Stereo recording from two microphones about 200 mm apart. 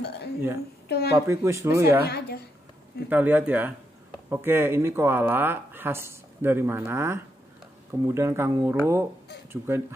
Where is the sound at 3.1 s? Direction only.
10° right (ahead or behind).